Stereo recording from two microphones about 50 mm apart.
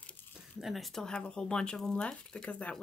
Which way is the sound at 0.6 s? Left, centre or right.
Centre.